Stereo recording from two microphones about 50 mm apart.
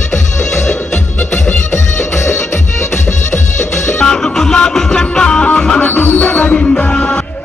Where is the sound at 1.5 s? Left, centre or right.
Left.